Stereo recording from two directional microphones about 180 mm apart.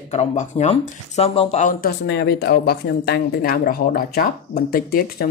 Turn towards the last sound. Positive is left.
turn(degrees=55)  # may be behind; listen again after turning